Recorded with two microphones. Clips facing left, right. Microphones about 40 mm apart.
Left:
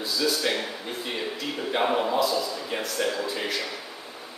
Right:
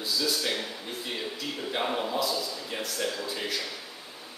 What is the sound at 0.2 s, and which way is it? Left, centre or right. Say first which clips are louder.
A man's voice: left 6 dB; centre.